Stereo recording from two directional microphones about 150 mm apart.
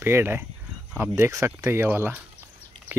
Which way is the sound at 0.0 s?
15° right (ahead or behind).